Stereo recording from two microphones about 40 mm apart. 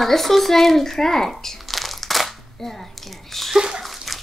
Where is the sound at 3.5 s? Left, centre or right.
Centre.